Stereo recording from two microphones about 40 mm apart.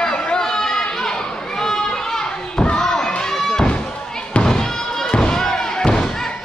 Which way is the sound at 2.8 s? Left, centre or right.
Centre.